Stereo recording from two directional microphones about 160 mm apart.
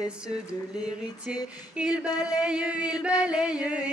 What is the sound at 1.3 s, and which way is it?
Chant, 5° right (ahead or behind).